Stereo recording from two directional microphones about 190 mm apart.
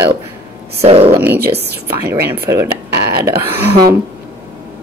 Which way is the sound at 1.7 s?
55° right (ahead or behind).